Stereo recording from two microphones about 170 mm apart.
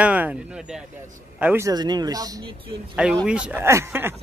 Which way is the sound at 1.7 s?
25° right (ahead or behind).